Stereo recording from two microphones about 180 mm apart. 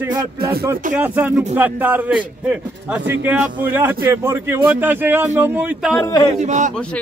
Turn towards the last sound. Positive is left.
turn(degrees=-40)  # may be behind; listen again after turning